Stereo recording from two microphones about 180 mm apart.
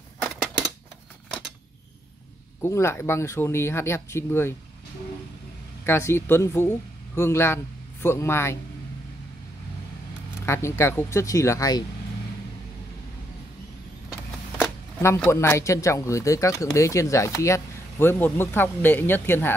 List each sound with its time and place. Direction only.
2.6 s speech: 15° left (ahead or behind)
5.9 s a man's voice: 15° left (ahead or behind)
10.4 s speech: 15° left (ahead or behind)
14.6 s speech: 10° left (ahead or behind)